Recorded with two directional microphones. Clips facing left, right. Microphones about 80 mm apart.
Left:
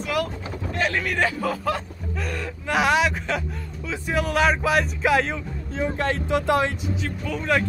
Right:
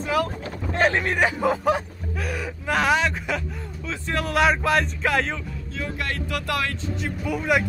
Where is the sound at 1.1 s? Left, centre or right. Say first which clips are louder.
Right 2 dB; right.